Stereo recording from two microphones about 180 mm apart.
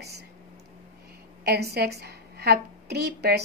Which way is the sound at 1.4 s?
65° right (ahead or behind).